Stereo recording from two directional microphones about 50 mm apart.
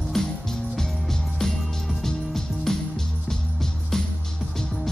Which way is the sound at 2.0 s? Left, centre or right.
Centre.